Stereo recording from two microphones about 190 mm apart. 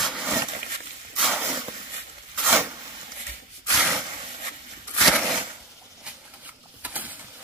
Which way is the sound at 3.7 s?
Centre (ahead or behind).